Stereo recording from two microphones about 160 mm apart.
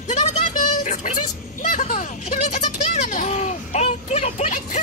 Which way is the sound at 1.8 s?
50° left (ahead or behind).